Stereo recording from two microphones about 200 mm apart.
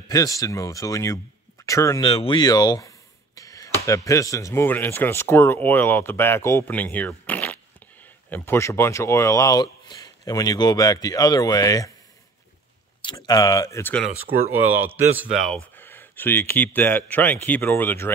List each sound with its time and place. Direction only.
0.1 s speech: 15° left (ahead or behind)
13.0 s speech: 20° left (ahead or behind)
14.9 s speech: 5° right (ahead or behind); by 18.1 s 10° left (ahead or behind)